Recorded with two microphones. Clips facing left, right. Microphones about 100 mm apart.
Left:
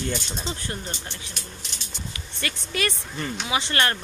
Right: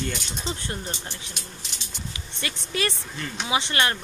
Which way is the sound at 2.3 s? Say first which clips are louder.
Even; 25° right (ahead or behind).